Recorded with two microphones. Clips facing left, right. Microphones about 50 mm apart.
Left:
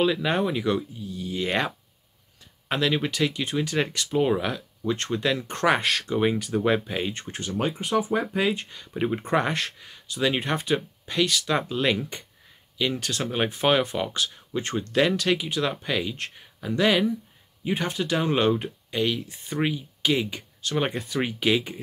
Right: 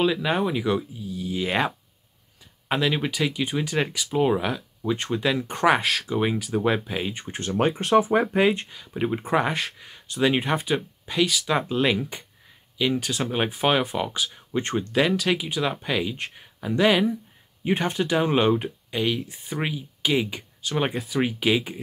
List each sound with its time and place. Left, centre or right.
0.0 s speech: centre
2.7 s speech: centre
7.4 s speech: right
8.6 s speech: centre
17.6 s speech: right